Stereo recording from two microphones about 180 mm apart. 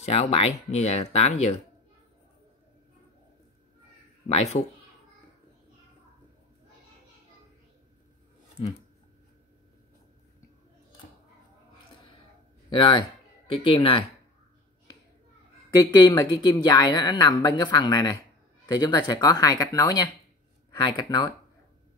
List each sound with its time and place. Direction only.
0.0 s speech: 35° left (ahead or behind)
4.3 s speech: 35° left (ahead or behind)
12.7 s speech: 25° left (ahead or behind)
15.8 s speech: 20° left (ahead or behind)